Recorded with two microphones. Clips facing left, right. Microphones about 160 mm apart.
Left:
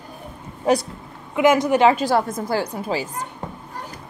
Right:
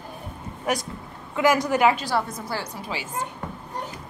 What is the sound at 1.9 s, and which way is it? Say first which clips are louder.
A woman's voice: left 6 dB; 45° left (ahead or behind).